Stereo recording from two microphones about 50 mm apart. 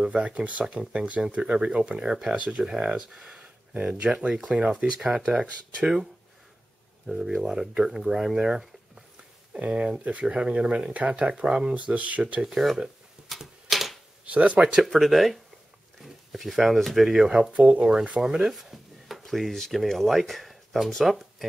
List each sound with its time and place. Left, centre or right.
0.0 s speech: right
2.3 s speech: right
2.6 s speech: centre
7.1 s speech: centre
9.5 s speech: right
12.4 s speech: centre
12.6 s typewriter: centre
14.2 s speech: right
14.9 s speech: centre
17.2 s speech: centre
17.5 s speech: right
18.3 s speech: centre